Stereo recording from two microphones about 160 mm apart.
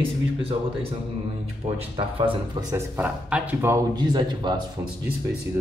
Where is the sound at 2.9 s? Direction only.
10° right (ahead or behind).